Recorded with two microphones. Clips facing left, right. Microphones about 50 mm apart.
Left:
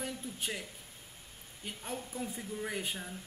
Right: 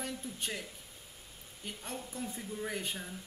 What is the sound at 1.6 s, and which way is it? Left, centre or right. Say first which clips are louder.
Speech: left 1 dB; centre.